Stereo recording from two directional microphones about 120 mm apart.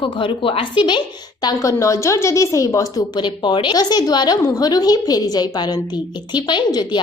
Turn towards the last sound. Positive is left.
turn(degrees=35)  # may be behind; listen again after turning